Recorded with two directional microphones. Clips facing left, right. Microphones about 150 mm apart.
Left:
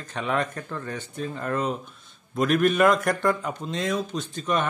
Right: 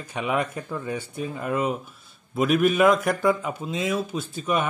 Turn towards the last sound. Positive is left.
turn(degrees=-5)  # may be behind; listen again after turning